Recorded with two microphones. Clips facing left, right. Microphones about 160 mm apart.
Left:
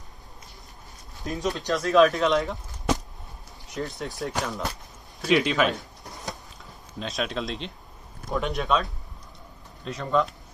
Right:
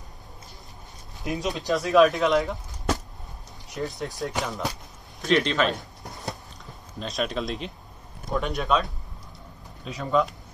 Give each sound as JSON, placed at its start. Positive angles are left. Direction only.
{"t": 1.2, "sound": "speech", "side_deg": -20}
{"t": 1.7, "sound": "speech", "side_deg": 0}
{"t": 9.8, "sound": "speech", "side_deg": 0}